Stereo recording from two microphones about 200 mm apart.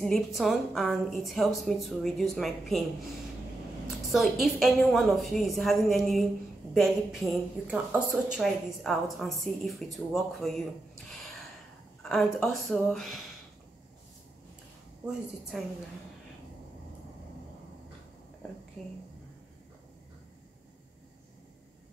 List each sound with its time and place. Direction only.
0.0 s a woman's voice: centre (ahead or behind)
4.1 s a woman's voice: centre (ahead or behind)
12.0 s a woman's voice: centre (ahead or behind)
15.0 s a woman's voice: centre (ahead or behind)
18.8 s a woman's voice: centre (ahead or behind)